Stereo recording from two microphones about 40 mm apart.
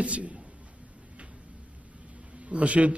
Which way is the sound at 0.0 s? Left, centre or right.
Right.